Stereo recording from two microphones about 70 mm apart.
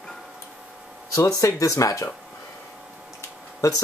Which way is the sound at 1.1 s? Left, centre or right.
Left.